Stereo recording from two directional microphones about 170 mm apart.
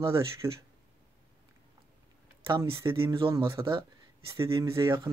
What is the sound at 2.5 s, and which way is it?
Speech, 15° right (ahead or behind).